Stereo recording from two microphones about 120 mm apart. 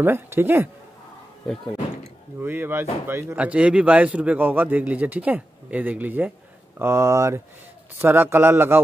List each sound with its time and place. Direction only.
0.0 s speech: 20° right (ahead or behind)
2.4 s speech: 15° right (ahead or behind)
3.3 s a man's voice: 10° right (ahead or behind)